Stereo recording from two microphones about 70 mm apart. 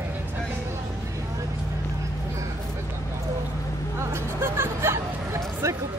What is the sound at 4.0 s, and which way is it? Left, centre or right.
Hubbub, right.